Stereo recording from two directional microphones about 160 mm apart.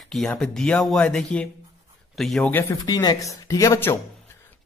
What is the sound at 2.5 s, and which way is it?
Speech, 15° left (ahead or behind).